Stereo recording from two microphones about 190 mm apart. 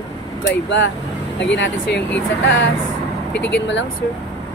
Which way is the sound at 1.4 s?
70° left (ahead or behind).